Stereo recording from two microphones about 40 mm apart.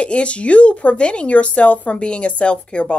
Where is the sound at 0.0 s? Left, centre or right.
Left.